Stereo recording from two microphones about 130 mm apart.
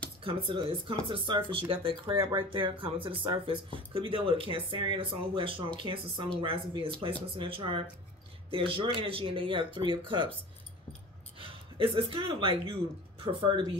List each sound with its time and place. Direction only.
0.2 s speech: 40° right (ahead or behind)
11.3 s speech: 45° right (ahead or behind)